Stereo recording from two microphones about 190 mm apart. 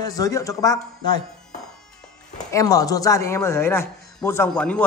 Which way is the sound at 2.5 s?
20° left (ahead or behind).